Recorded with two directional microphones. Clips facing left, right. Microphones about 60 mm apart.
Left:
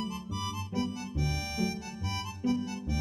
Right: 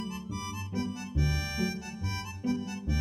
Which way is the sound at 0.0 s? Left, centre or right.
Right.